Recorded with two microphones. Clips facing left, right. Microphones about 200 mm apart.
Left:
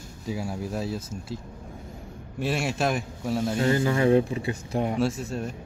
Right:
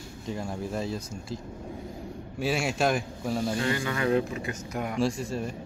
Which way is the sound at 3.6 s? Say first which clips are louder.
Left 6 dB; 30° left (ahead or behind).